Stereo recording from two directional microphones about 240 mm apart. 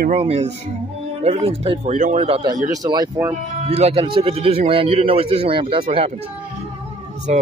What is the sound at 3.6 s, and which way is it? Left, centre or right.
Speech, right.